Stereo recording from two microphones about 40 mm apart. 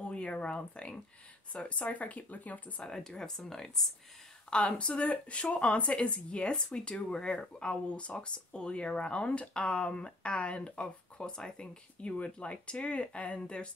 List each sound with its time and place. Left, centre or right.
0.1 s speech: left
2.8 s speech: centre
4.5 s speech: left